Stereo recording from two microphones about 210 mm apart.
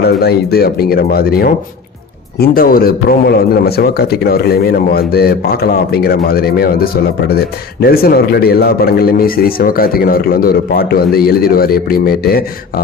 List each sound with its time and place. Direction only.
0.0 s a man's voice: 50° left (ahead or behind)